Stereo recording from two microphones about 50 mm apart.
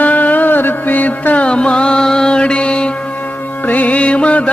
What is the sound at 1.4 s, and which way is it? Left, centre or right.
Music, centre.